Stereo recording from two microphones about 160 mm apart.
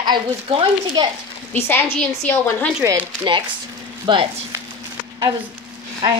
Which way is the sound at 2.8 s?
20° right (ahead or behind).